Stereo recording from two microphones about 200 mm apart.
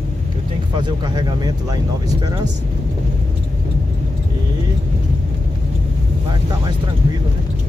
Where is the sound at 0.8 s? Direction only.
20° right (ahead or behind).